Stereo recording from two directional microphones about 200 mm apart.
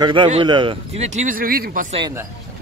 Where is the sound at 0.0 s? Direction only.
25° right (ahead or behind); by 2.0 s 45° right (ahead or behind).